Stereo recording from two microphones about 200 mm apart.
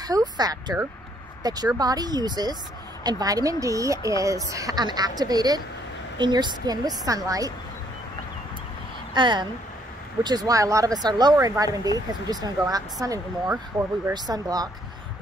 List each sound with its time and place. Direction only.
0.0 s a woman's voice: 20° right (ahead or behind)
9.1 s a woman's voice: 20° right (ahead or behind)